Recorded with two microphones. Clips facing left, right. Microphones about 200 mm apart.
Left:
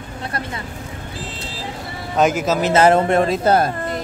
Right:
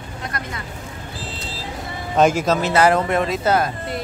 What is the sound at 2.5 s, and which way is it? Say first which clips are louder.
Speech: left 7 dB; 20° left (ahead or behind).